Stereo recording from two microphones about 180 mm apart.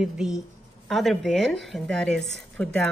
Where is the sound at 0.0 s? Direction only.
Centre (ahead or behind).